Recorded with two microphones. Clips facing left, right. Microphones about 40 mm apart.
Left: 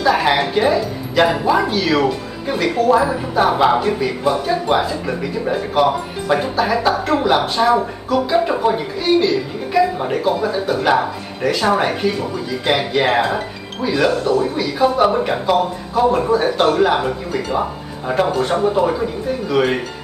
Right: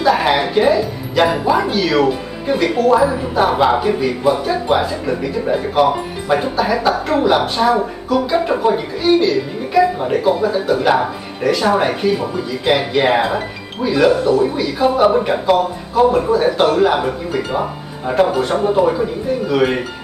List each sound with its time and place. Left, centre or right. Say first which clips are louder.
0.0 s speech: right 1 dB; centre